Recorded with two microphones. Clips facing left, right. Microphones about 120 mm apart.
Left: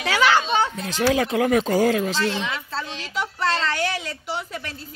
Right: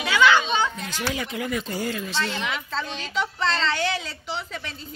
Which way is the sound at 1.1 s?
85° left.